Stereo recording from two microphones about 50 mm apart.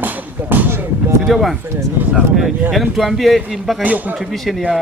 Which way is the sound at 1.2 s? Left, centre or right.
Centre.